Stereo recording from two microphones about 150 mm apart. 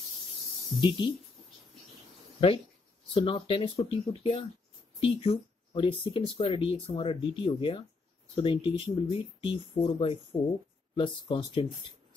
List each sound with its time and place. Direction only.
0.7 s speech: 30° left (ahead or behind)
3.2 s speech: 35° left (ahead or behind)